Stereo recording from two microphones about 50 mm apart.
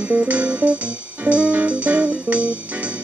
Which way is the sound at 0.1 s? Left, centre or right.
Right.